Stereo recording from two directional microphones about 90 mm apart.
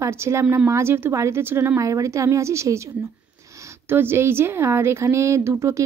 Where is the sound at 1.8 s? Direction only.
35° right (ahead or behind).